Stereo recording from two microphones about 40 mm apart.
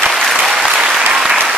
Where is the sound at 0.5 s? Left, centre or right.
Centre.